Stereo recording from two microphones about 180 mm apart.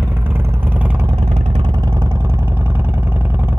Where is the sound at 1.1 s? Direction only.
30° right (ahead or behind).